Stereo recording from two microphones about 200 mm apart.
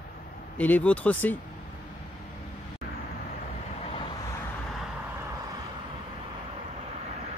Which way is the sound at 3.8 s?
30° left (ahead or behind).